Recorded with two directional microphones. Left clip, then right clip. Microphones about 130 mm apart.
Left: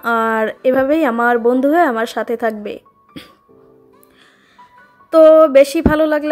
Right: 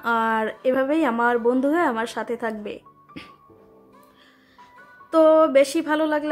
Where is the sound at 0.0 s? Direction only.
35° left (ahead or behind).